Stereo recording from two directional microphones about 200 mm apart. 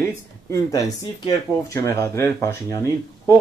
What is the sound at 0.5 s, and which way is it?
Speech, 15° left (ahead or behind).